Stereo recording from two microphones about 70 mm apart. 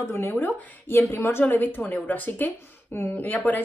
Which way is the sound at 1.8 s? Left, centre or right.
Left.